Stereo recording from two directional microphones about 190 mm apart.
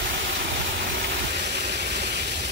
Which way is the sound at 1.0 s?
60° right (ahead or behind).